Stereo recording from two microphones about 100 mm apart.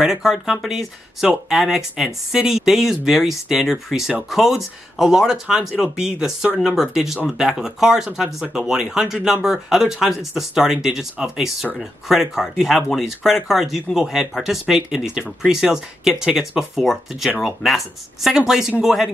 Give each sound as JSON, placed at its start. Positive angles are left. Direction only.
{"t": 0.0, "sound": "speech", "side_deg": -5}